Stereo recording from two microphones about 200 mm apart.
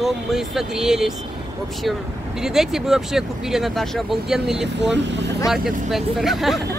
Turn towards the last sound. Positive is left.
turn(degrees=0)  # may be behind; listen again after turning